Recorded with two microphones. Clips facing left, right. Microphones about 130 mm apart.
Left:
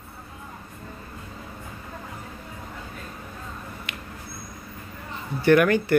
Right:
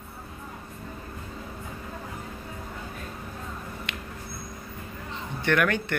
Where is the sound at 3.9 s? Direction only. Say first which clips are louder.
Right 1 dB; 5° left (ahead or behind).